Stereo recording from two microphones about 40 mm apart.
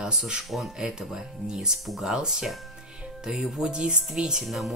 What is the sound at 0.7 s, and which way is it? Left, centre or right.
Speech, centre.